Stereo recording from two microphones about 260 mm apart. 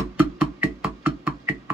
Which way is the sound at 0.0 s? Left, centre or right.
Centre.